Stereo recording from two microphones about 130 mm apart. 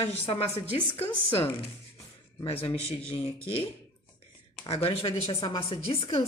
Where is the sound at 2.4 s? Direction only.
50° left (ahead or behind).